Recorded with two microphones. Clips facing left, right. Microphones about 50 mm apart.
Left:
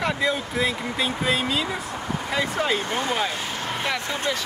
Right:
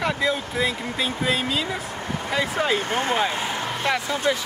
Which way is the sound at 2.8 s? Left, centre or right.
Right.